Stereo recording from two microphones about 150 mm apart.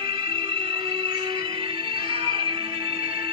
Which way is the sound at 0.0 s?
35° right (ahead or behind).